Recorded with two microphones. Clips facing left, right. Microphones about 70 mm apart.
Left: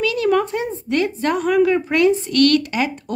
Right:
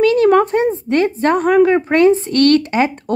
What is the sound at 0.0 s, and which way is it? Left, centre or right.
Speech, right.